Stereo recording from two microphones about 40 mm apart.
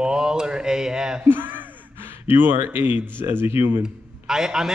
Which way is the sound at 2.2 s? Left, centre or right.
Right.